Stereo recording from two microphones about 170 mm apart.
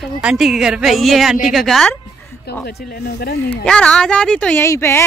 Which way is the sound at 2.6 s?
65° left (ahead or behind).